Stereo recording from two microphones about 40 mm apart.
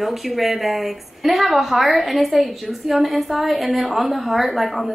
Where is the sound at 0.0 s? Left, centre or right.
Centre.